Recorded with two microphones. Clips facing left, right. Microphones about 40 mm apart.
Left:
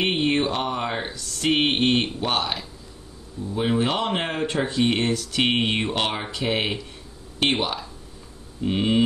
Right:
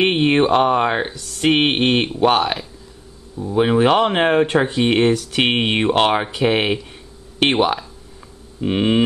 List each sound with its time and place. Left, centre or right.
0.0 s speech: right